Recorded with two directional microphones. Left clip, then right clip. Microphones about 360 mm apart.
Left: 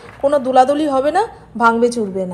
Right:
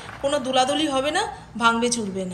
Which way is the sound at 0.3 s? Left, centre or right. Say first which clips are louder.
Left 9 dB; centre.